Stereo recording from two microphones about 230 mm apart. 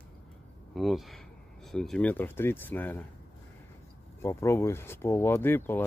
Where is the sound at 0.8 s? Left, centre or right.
Centre.